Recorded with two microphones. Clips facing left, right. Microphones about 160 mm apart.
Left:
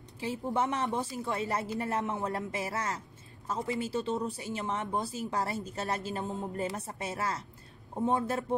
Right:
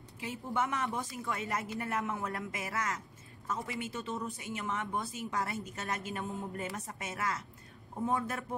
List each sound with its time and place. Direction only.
0.2 s a woman's voice: 30° left (ahead or behind)